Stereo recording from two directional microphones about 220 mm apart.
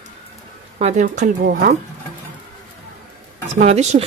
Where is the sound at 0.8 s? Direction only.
35° right (ahead or behind).